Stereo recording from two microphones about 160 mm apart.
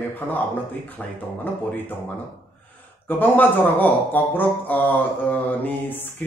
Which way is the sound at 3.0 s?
10° left (ahead or behind).